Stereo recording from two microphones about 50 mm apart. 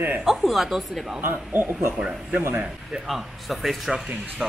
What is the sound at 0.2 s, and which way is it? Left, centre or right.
Speech, centre.